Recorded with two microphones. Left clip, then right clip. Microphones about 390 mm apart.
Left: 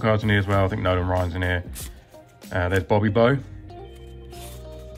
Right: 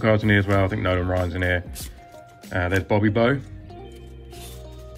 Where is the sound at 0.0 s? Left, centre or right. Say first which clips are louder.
Right 2 dB; centre.